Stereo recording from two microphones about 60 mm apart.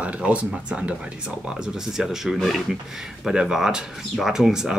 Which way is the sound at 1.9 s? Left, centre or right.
Centre.